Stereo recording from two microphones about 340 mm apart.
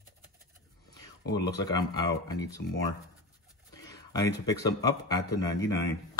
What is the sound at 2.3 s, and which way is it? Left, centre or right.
Speech, centre.